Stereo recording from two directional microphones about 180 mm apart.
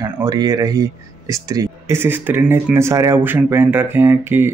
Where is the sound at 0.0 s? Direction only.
20° right (ahead or behind).